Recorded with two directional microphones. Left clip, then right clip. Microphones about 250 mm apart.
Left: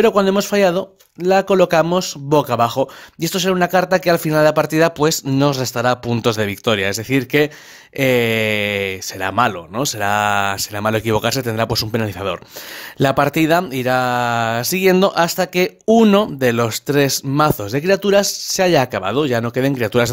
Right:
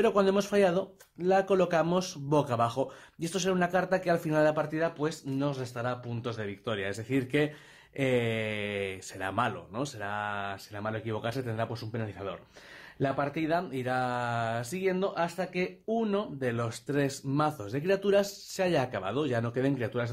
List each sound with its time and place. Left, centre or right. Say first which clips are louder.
0.0 s speech: left 11 dB; left